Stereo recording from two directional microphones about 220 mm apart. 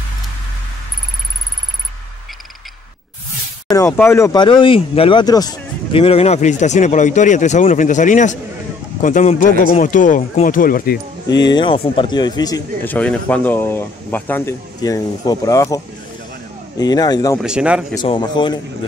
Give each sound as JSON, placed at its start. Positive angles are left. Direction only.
{"t": 3.7, "sound": "speech", "side_deg": 10}
{"t": 11.4, "sound": "speech", "side_deg": 20}
{"t": 16.8, "sound": "speech", "side_deg": 20}
{"t": 17.4, "sound": "speech", "side_deg": -5}
{"t": 18.0, "sound": "speech", "side_deg": 20}